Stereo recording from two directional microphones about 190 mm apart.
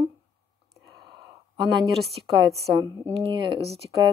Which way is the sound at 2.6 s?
25° right (ahead or behind).